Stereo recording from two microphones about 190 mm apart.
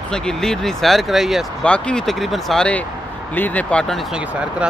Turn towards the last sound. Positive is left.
turn(degrees=-5)  # may be behind; listen again after turning